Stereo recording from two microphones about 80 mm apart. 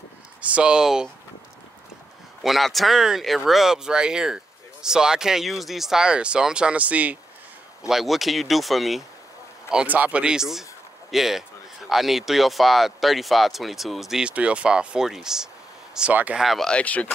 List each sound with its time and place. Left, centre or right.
0.4 s speech: centre
2.4 s speech: centre
7.9 s speech: centre
9.8 s speech: centre
16.1 s speech: centre
16.3 s speech: centre
16.7 s speech: centre